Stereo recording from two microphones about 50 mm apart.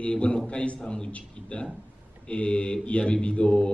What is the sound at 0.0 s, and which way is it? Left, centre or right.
Speech, left.